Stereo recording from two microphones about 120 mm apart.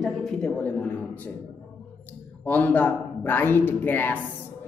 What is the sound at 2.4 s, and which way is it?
A woman's voice, 15° left (ahead or behind).